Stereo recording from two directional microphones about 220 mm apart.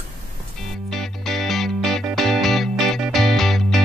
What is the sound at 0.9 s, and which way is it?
Music, centre (ahead or behind).